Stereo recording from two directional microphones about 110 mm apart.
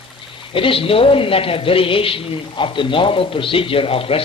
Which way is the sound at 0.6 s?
55° left (ahead or behind).